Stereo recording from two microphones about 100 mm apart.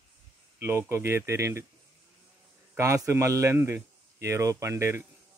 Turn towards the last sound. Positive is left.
turn(degrees=-25)  # may be behind; listen again after turning